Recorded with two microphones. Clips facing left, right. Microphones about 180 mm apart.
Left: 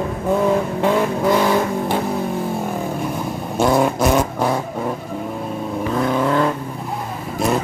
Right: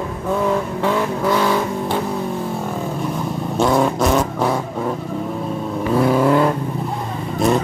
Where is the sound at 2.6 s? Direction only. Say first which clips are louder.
Left 1 dB; 10° left (ahead or behind).